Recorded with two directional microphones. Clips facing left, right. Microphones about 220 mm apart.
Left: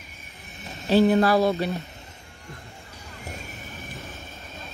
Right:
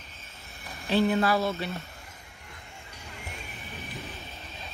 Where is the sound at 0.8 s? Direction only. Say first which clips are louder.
Left 6 dB; 40° left (ahead or behind).